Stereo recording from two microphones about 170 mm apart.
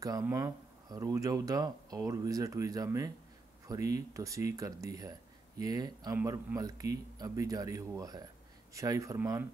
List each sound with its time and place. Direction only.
0.0 s speech: 20° right (ahead or behind)